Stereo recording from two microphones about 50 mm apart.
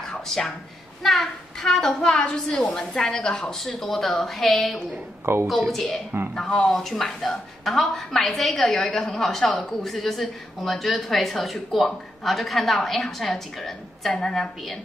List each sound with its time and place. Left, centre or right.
1.0 s a woman's voice: centre
5.2 s a woman's voice: right
6.3 s a woman's voice: centre